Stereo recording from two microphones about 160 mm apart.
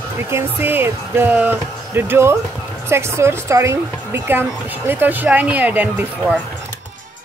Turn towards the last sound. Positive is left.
turn(degrees=-10)  # may be behind; listen again after turning